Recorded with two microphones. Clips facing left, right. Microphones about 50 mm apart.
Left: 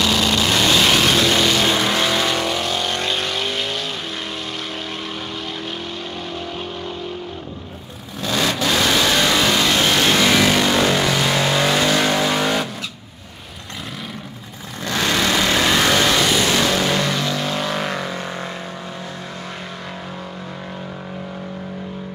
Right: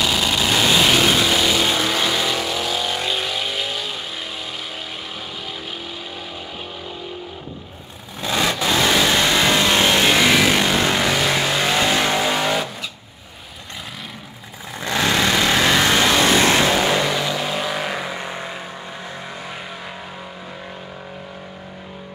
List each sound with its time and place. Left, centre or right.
0.0 s vehicle: centre
1.7 s vehicle: centre
8.2 s vehicle: centre
11.8 s vehicle: centre
14.9 s vehicle: centre
15.1 s vehicle: centre